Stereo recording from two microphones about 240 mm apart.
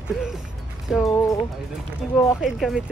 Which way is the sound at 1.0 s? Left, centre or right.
Centre.